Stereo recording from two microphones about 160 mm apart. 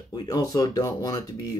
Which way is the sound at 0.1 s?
25° left (ahead or behind).